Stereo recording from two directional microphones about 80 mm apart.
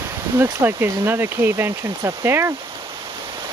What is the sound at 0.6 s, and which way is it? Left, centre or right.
Speech, right.